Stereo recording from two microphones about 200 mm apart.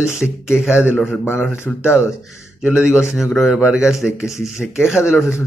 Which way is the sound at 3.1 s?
Centre (ahead or behind).